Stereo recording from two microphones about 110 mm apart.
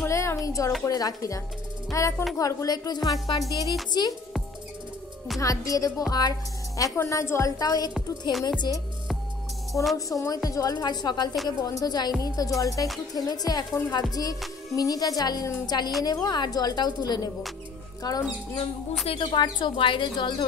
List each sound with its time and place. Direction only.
0.0 s a sound: 25° left (ahead or behind)
0.8 s a woman's voice: 35° left (ahead or behind)
5.4 s a woman's voice: 30° left (ahead or behind)
9.9 s speech: 30° left (ahead or behind)
19.0 s speech: 45° left (ahead or behind)